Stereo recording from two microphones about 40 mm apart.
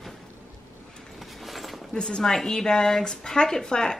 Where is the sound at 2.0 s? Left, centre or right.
Centre.